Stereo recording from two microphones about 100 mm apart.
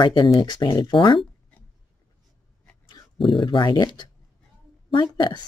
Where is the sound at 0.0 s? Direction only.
55° left (ahead or behind).